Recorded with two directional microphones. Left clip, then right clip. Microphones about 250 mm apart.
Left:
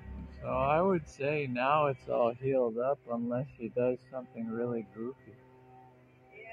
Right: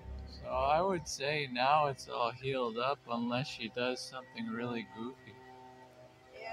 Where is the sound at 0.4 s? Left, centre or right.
Centre.